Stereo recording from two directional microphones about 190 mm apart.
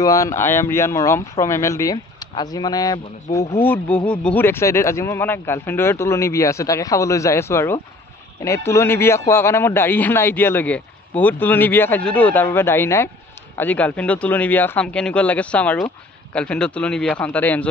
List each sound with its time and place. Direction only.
0.0 s a man's voice: 15° left (ahead or behind)
3.6 s a man's voice: 10° left (ahead or behind)